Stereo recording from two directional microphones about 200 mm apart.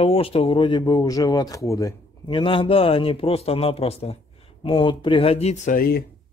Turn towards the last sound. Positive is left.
turn(degrees=50)  # may be behind; listen again after turning